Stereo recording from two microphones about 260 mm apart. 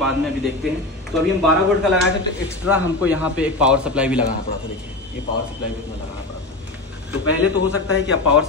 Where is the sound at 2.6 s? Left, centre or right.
Centre.